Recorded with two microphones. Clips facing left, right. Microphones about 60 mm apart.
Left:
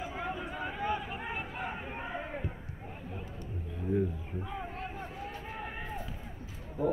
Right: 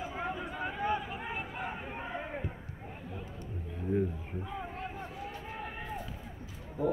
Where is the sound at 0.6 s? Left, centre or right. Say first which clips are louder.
Right 2 dB; right.